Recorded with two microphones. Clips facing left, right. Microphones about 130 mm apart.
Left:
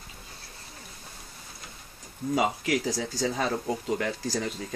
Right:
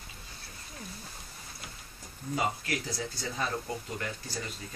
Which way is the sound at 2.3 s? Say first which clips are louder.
Left 6 dB; 90° left.